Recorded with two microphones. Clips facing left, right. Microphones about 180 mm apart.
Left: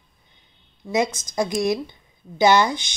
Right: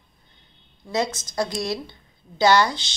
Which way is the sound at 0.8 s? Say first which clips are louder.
Left 3 dB; 15° left (ahead or behind).